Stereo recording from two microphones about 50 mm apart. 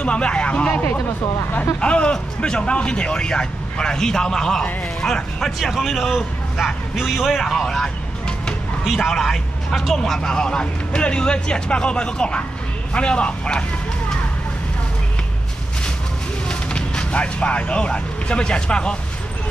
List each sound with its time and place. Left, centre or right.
0.0 s speech: left
5.6 s a man's voice: centre
7.6 s vehicle: centre
8.8 s a man's voice: centre
16.4 s speech: centre